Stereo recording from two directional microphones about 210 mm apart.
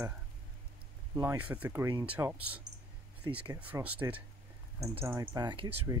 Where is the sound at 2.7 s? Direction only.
55° right (ahead or behind).